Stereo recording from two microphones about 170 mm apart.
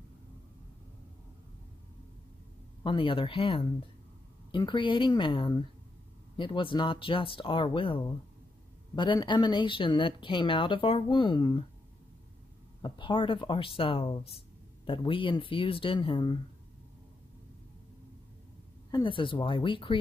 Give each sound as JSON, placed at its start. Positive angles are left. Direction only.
{"t": 2.8, "sound": "speech", "side_deg": 30}
{"t": 12.8, "sound": "speech", "side_deg": 25}
{"t": 18.9, "sound": "speech", "side_deg": 25}